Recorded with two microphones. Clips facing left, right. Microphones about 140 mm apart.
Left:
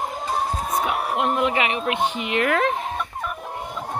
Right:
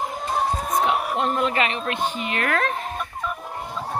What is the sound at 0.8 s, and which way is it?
Speech, 15° left (ahead or behind).